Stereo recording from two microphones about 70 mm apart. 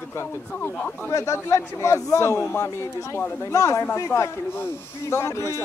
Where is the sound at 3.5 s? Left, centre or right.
Left.